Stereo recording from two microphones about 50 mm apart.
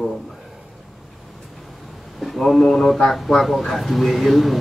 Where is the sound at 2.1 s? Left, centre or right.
Centre.